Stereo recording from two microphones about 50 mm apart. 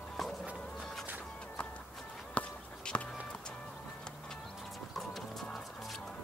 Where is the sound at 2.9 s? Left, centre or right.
Left.